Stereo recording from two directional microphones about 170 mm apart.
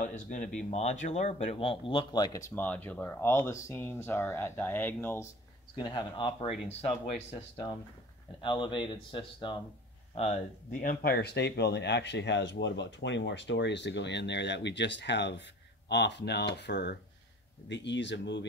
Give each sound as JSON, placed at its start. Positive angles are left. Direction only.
{"t": 0.0, "sound": "speech", "side_deg": 45}
{"t": 5.8, "sound": "speech", "side_deg": 25}
{"t": 8.4, "sound": "speech", "side_deg": 30}
{"t": 10.7, "sound": "speech", "side_deg": 55}